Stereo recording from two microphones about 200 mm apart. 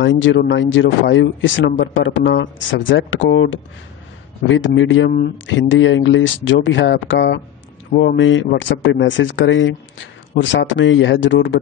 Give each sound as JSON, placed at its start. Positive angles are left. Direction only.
{"t": 0.0, "sound": "speech", "side_deg": 65}